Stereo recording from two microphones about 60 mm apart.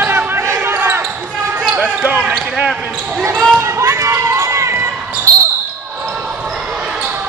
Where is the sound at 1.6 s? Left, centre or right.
Right.